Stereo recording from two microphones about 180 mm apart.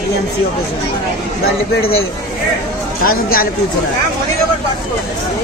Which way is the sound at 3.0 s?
55° left (ahead or behind).